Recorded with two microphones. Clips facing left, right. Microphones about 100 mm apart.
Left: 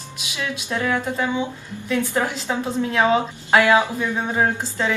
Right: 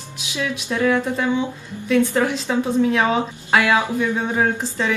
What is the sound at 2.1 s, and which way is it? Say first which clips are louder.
Speech: right 3 dB; 15° left (ahead or behind).